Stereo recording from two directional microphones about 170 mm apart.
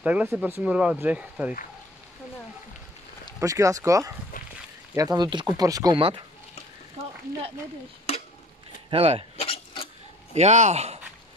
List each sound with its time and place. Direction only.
0.0 s speech: 10° right (ahead or behind)
3.3 s speech: 20° right (ahead or behind)
8.1 s a sound: 40° left (ahead or behind)
8.9 s a man's voice: 35° right (ahead or behind)
9.4 s filing: 35° left (ahead or behind)
10.3 s a man's voice: 40° right (ahead or behind)